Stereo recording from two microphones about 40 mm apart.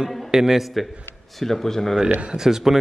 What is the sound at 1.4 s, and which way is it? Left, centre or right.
Speech, centre.